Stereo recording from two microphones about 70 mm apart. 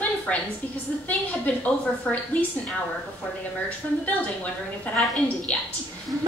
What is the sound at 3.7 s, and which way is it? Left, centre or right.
A woman's voice, left.